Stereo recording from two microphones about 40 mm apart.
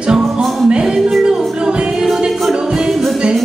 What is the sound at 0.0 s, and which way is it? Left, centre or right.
Music, right.